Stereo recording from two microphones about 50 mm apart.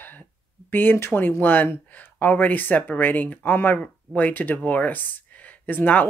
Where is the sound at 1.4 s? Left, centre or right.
Left.